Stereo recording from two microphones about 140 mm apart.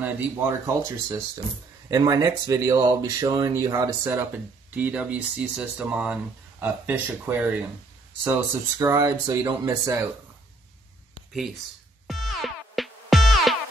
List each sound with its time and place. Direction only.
0.0 s speech: 20° right (ahead or behind)
4.7 s speech: 10° right (ahead or behind)
12.1 s music: centre (ahead or behind)